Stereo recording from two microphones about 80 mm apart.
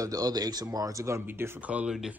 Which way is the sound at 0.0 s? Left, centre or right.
Right.